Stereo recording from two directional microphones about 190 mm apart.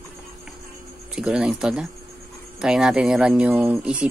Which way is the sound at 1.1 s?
5° right (ahead or behind).